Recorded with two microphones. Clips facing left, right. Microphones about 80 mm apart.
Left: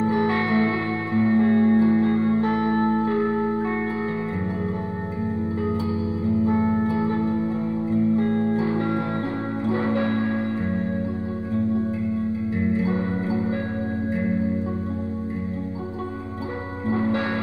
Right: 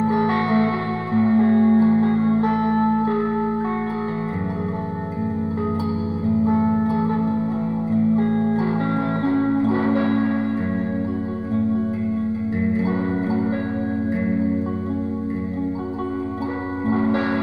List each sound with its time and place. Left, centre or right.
0.1 s music: right
6.4 s music: centre
6.9 s music: right
8.2 s music: centre
9.6 s a sound: right
12.8 s music: right
16.8 s music: right